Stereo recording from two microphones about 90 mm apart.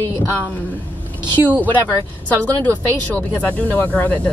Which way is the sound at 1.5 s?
20° left (ahead or behind).